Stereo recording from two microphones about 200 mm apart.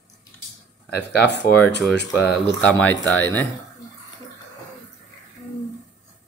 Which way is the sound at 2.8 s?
5° left (ahead or behind).